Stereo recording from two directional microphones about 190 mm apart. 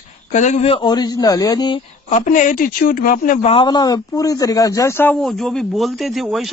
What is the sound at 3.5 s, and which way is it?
Speech, 20° left (ahead or behind).